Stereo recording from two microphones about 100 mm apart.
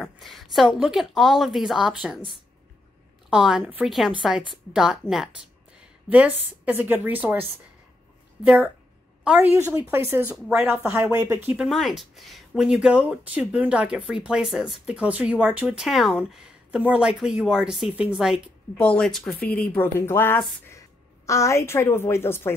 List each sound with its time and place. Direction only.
0.0 s speech: centre (ahead or behind)
3.3 s a woman's voice: 10° right (ahead or behind)
6.0 s speech: 15° right (ahead or behind)
8.5 s a woman's voice: 10° right (ahead or behind)
11.5 s speech: centre (ahead or behind)
15.6 s speech: 5° right (ahead or behind)
18.8 s speech: 10° left (ahead or behind)
19.4 s speech: 20° left (ahead or behind)